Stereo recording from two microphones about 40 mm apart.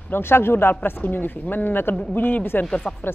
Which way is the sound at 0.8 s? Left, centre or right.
Left.